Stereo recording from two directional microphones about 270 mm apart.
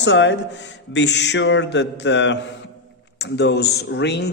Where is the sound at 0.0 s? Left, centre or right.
Left.